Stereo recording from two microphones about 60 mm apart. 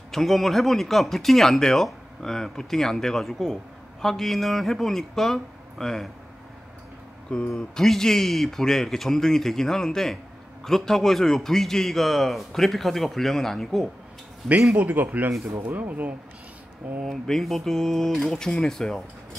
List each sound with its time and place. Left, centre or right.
0.1 s speech: centre
7.2 s speech: centre
14.8 s a man's voice: right
17.0 s speech: centre